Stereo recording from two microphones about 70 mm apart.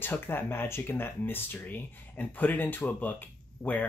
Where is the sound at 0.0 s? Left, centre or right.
Left.